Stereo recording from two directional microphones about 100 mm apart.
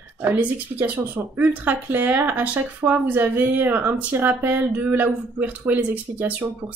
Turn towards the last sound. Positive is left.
turn(degrees=-15)  # may be behind; listen again after turning